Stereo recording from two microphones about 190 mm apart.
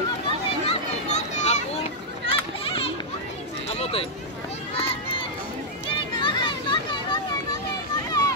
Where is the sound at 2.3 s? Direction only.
30° left (ahead or behind).